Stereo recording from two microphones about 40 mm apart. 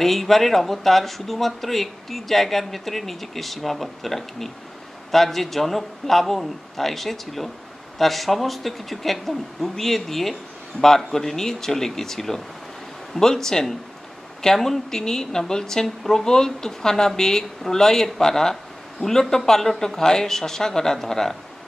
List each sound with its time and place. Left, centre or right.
0.0 s a woman's voice: centre